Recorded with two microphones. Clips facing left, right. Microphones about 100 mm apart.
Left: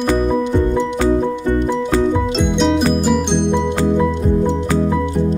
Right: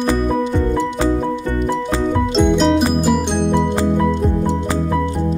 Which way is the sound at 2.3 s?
Centre (ahead or behind).